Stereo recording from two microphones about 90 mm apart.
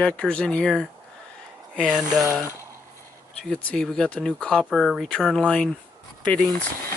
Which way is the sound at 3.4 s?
10° left (ahead or behind).